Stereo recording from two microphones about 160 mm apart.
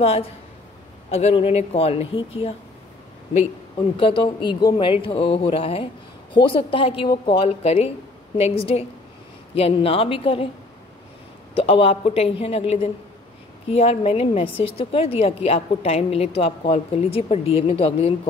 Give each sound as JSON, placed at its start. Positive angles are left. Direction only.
{"t": 1.1, "sound": "a woman's voice", "side_deg": 40}
{"t": 3.9, "sound": "a woman's voice", "side_deg": 30}
{"t": 11.5, "sound": "a woman's voice", "side_deg": 35}